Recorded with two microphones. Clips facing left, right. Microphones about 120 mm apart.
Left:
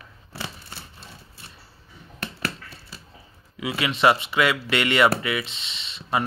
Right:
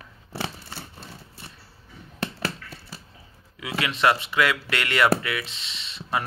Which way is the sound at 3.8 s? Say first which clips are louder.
Left 2 dB; 5° left (ahead or behind).